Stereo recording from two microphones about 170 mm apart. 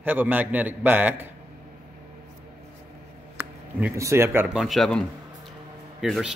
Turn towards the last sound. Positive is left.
turn(degrees=-5)  # may be behind; listen again after turning